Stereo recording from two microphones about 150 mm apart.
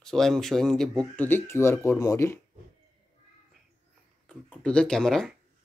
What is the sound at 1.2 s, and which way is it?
Speech, 15° left (ahead or behind).